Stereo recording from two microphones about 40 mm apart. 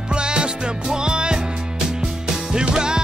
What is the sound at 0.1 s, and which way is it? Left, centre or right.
Music, right.